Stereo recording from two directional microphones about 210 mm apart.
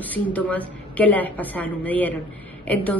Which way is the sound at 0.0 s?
5° left (ahead or behind).